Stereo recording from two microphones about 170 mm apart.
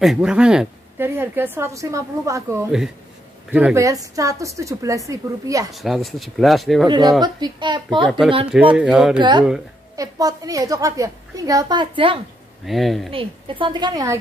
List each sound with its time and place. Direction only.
0.0 s a woman's voice: 5° right (ahead or behind); by 5.7 s 20° right (ahead or behind)
5.7 s speech: centre (ahead or behind)
6.9 s a woman's voice: 25° right (ahead or behind)
8.7 s speech: 5° right (ahead or behind)
9.2 s a woman's voice: 25° right (ahead or behind)
12.6 s speech: centre (ahead or behind)
13.1 s a woman's voice: 30° right (ahead or behind)